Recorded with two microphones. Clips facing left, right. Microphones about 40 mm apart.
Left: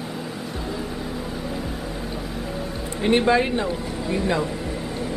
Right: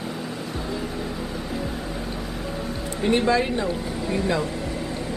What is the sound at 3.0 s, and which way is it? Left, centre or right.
Speech, left.